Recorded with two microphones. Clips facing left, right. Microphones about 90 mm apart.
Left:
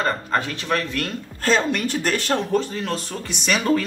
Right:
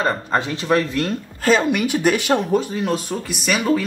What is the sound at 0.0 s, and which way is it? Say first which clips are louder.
Speech: right 2 dB; 20° right (ahead or behind).